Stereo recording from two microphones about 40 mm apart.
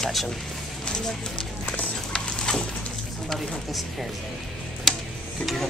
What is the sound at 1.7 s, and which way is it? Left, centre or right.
Horse, left.